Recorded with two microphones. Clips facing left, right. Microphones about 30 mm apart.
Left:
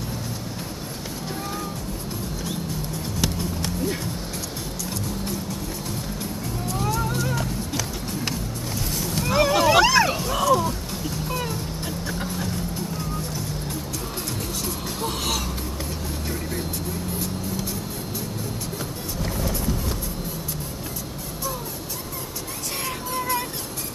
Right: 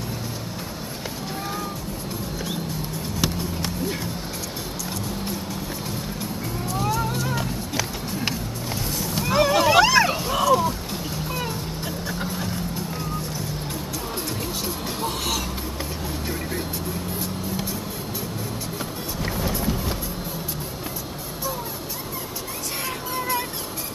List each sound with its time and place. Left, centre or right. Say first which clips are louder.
3.2 s music: right 1 dB; centre
6.7 s music: right 1 dB; centre
8.9 s a sound: even; centre
12.1 s music: even; centre
15.0 s music: even; centre
19.4 s music: right 2 dB; centre
22.8 s music: left 1 dB; centre